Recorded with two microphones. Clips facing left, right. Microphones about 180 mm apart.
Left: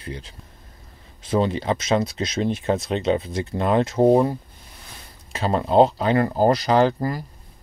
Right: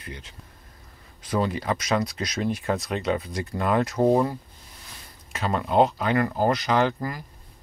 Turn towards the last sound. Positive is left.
turn(degrees=35)  # may be behind; listen again after turning